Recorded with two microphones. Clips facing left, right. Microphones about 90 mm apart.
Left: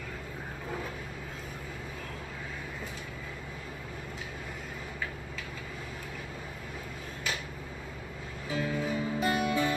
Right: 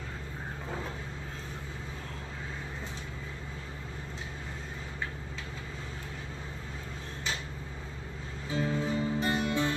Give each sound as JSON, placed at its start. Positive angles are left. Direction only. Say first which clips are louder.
{"t": 8.5, "sound": "music", "louder": "right 1 dB", "side_deg": -30}